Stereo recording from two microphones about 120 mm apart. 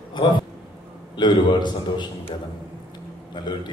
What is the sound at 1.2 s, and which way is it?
Speech, 40° left (ahead or behind).